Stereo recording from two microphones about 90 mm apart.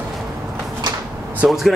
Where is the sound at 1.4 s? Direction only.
5° right (ahead or behind).